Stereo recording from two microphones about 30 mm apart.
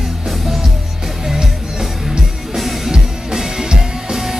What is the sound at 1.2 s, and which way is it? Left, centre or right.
Music, centre.